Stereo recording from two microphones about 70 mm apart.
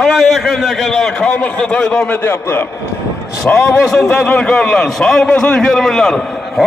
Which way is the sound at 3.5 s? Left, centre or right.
Centre.